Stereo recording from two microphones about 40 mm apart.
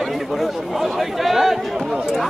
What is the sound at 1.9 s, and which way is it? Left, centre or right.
Speech, centre.